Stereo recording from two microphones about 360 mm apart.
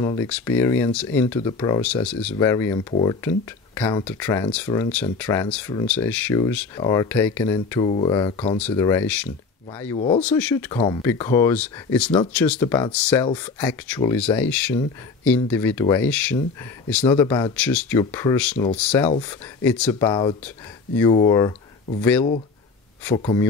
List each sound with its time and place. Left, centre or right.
0.0 s speech: centre
3.7 s speech: centre
9.9 s speech: centre
10.2 s speech: centre